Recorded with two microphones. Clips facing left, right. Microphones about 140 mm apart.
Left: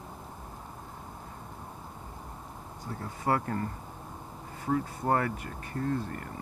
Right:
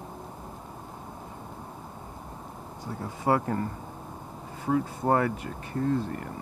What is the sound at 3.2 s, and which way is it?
Speech, 25° right (ahead or behind).